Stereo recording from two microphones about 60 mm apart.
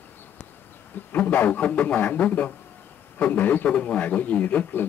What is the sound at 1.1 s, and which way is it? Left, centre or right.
A man's voice, left.